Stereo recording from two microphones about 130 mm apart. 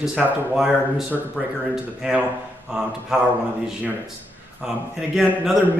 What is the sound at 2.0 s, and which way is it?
Speech, 10° right (ahead or behind).